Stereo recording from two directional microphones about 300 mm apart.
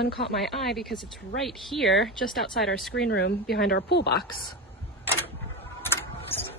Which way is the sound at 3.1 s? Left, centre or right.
Left.